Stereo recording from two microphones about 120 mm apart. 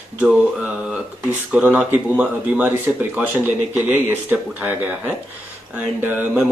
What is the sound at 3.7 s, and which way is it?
A man's voice, 15° right (ahead or behind).